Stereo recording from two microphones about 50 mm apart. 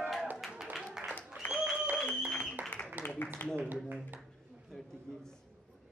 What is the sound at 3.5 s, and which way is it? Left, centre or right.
Speech, right.